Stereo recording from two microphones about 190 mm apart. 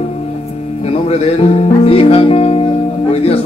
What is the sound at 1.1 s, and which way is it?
Music, 30° left (ahead or behind).